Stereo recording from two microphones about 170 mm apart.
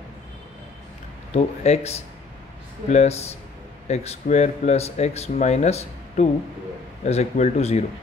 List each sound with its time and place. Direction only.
1.3 s speech: 40° left (ahead or behind)